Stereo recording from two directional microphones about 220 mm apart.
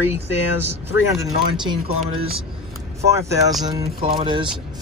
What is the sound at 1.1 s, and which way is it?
Speech, 15° right (ahead or behind).